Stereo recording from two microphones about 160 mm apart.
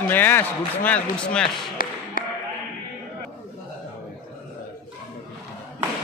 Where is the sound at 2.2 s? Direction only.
60° left (ahead or behind).